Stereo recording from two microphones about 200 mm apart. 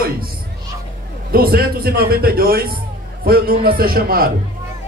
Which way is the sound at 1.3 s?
50° right (ahead or behind).